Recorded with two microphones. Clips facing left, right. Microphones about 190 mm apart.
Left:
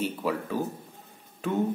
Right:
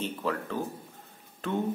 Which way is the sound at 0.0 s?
10° left (ahead or behind).